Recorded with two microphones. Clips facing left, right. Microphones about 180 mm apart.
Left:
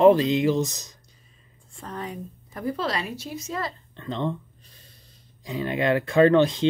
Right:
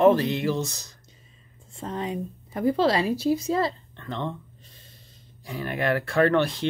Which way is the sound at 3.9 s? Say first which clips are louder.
Left 3 dB; 15° left (ahead or behind).